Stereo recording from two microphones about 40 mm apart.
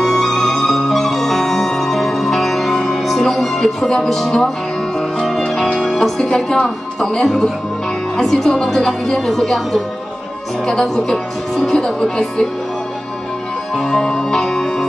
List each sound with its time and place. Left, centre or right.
0.0 s music: centre
5.7 s music: centre
6.2 s a woman's voice: centre
13.8 s music: centre